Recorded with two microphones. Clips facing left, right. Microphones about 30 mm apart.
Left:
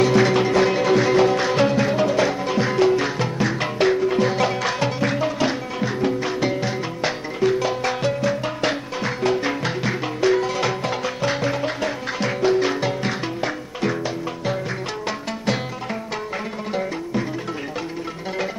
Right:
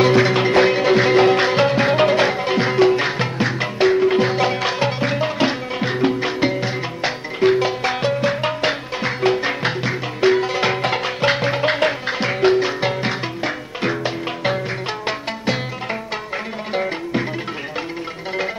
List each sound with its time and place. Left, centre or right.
0.2 s music: right
0.5 s music: right
3.5 s music: centre
4.0 s music: right
7.3 s music: right
8.3 s music: right
8.5 s music: right
10.7 s music: right
11.6 s music: right
12.1 s music: right
13.7 s music: right
16.7 s music: right